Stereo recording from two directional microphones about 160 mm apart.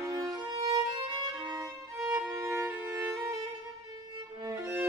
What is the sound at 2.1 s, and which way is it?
Music, 10° right (ahead or behind).